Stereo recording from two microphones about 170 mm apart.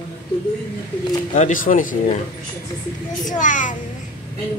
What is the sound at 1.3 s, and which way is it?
Speech, 50° left (ahead or behind).